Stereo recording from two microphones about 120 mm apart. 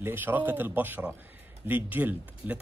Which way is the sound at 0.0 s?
15° right (ahead or behind).